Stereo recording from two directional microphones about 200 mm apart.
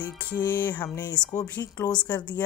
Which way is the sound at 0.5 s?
10° left (ahead or behind).